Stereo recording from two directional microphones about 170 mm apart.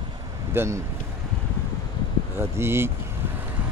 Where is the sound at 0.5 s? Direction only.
15° right (ahead or behind).